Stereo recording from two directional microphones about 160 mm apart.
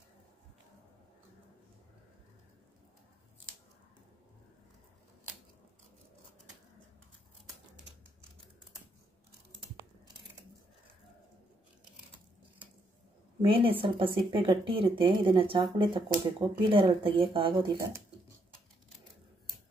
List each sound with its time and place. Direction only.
13.4 s speech: 35° right (ahead or behind)
17.7 s speech: 15° right (ahead or behind)